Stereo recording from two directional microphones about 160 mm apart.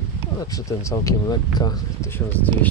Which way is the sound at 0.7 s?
20° left (ahead or behind).